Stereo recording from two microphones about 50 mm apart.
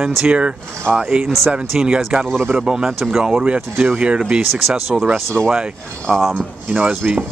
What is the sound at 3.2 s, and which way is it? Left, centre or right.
Speech, right.